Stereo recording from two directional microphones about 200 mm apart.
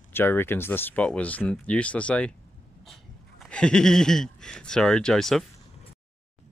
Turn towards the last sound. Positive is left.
turn(degrees=0)  # may be behind; listen again after turning